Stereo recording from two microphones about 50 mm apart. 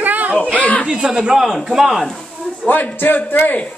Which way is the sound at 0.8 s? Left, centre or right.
Centre.